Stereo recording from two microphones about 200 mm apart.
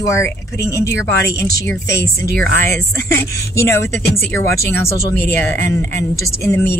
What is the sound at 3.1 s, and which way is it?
Speech, 15° left (ahead or behind).